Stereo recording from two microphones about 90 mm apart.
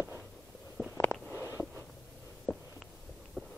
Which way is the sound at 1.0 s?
20° left (ahead or behind).